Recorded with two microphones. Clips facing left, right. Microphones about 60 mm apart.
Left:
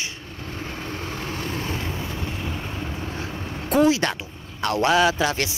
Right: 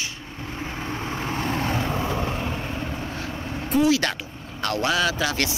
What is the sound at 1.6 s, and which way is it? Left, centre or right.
Boat, right.